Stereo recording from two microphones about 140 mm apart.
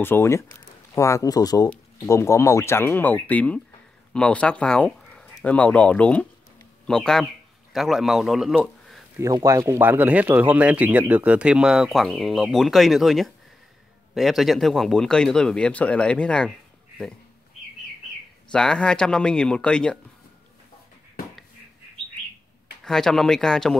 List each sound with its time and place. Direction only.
0.0 s a man's voice: 20° left (ahead or behind); by 9.0 s centre (ahead or behind)
9.2 s a man's voice: 25° right (ahead or behind); by 16.5 s 5° left (ahead or behind)
18.5 s a man's voice: 5° left (ahead or behind)
22.8 s a man's voice: 5° left (ahead or behind)